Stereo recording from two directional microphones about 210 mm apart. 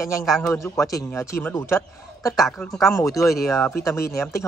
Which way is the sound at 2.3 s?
Centre (ahead or behind).